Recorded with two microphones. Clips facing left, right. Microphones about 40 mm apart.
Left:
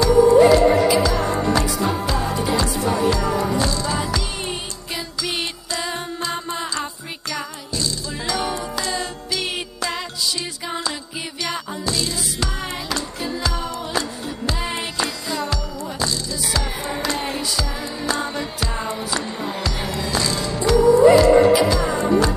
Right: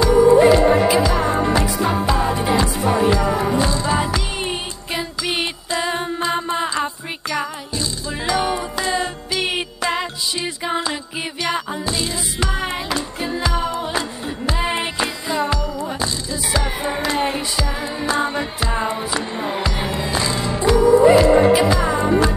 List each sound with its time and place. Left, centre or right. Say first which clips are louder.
0.0 s music: right 1 dB; right